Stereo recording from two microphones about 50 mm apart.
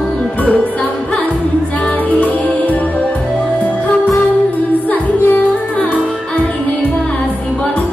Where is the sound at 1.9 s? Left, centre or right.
Left.